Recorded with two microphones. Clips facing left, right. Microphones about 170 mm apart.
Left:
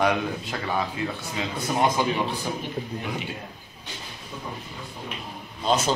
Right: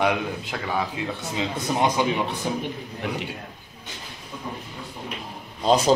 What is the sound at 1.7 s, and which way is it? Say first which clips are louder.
Speech: even; 20° right (ahead or behind).